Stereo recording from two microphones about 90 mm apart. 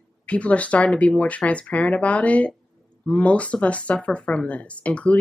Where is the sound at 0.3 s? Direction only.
15° left (ahead or behind).